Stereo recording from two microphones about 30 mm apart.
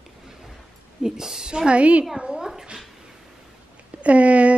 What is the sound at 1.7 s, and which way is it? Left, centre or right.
Speech, right.